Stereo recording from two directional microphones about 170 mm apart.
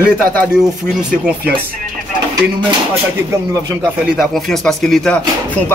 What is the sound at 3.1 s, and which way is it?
Speech, 15° right (ahead or behind).